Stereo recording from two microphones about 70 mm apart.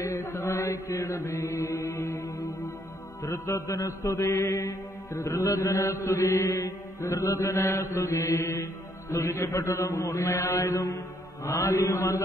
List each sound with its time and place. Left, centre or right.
0.0 s chant: left
0.5 s chant: left
3.3 s mantra: left
11.4 s mantra: left